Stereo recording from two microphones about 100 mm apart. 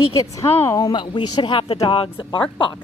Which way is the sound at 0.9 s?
50° left (ahead or behind).